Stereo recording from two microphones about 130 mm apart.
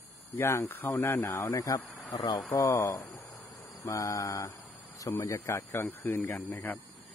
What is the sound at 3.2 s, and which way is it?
Insect, 15° left (ahead or behind).